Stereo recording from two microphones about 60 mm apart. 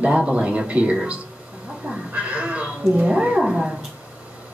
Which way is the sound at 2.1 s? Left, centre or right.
Right.